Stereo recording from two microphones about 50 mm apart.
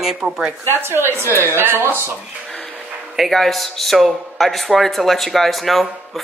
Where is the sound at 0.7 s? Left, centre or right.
Right.